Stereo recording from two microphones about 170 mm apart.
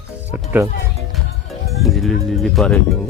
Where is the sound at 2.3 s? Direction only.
Centre (ahead or behind).